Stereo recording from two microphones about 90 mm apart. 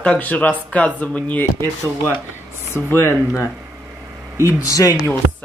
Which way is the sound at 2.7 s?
30° left (ahead or behind).